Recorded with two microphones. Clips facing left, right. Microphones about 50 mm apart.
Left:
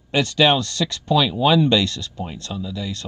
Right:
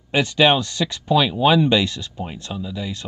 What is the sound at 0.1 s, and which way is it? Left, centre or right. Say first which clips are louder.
Speech: right 1 dB; centre.